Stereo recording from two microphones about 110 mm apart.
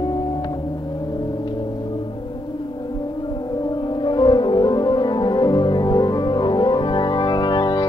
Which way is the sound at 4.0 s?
40° left (ahead or behind).